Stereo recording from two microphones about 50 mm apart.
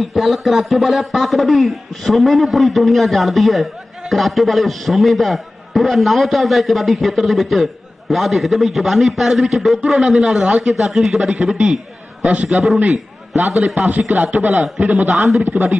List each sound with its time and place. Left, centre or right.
0.0 s a man's voice: centre
12.2 s a man's voice: right
12.4 s a man's voice: centre
13.8 s speech: right
14.2 s a man's voice: centre
15.1 s a man's voice: centre
15.4 s speech: right